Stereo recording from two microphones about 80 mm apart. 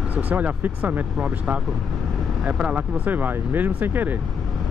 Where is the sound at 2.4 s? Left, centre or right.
Centre.